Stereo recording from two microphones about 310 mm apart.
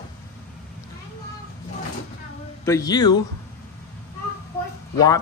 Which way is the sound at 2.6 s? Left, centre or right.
Centre.